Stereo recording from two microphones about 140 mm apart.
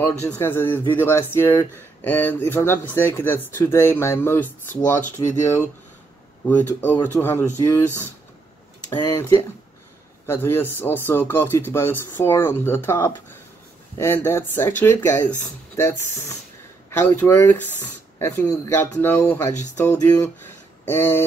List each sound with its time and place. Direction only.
0.0 s speech: 15° left (ahead or behind)
5.2 s speech: 30° left (ahead or behind)
6.4 s speech: 15° left (ahead or behind)
8.9 s speech: 20° left (ahead or behind)